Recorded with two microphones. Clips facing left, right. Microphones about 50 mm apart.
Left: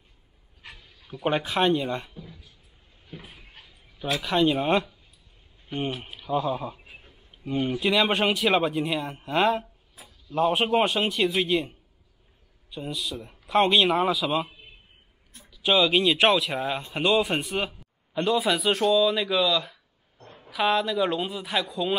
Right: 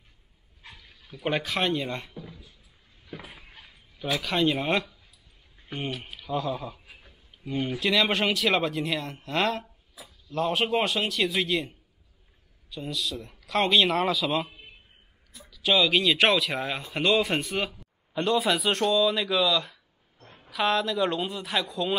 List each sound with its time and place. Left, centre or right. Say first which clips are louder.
1.0 s speech: left 3 dB; centre
4.2 s speech: left 3 dB; centre
4.6 s a man's voice: left 3 dB; left
6.0 s a man's voice: left 3 dB; centre
12.6 s a man's voice: even; centre
15.5 s a man's voice: left 1 dB; left
16.5 s a man's voice: left 2 dB; centre
18.1 s speech: left 1 dB; centre